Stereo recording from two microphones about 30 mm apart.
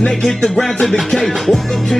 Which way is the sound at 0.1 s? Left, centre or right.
Centre.